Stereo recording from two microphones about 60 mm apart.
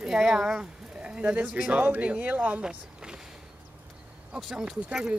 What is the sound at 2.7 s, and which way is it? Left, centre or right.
Speech, centre.